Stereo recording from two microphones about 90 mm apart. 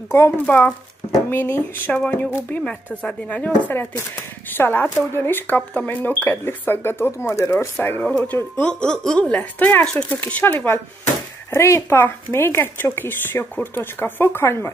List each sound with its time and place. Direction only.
0.5 s speech: 25° left (ahead or behind)
2.0 s speech: 10° left (ahead or behind)
8.6 s speech: 10° left (ahead or behind); by 14.7 s 25° left (ahead or behind)